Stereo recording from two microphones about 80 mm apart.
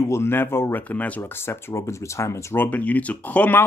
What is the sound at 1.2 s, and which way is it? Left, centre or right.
Speech, left.